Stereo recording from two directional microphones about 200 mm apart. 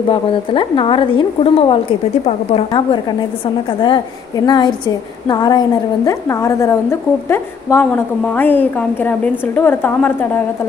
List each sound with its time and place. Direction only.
0.1 s a woman's voice: 25° left (ahead or behind)
4.5 s a woman's voice: 20° left (ahead or behind)